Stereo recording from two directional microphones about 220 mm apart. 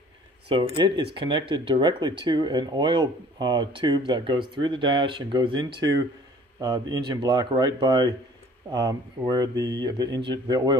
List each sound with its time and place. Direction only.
0.5 s speech: 20° right (ahead or behind)